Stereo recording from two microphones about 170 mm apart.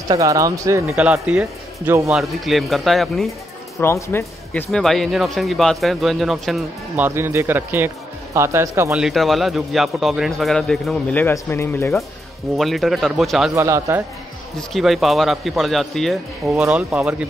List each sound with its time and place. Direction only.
0.1 s speech: 20° right (ahead or behind)
0.9 s speech: 5° right (ahead or behind)
3.8 s speech: 15° left (ahead or behind)
4.6 s speech: centre (ahead or behind)
7.1 s speech: 15° right (ahead or behind)
9.0 s speech: centre (ahead or behind)
12.5 s speech: centre (ahead or behind)
13.6 s speech: 15° right (ahead or behind)
14.7 s speech: centre (ahead or behind)